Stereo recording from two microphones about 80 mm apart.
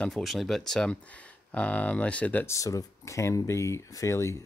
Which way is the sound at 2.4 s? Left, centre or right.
Left.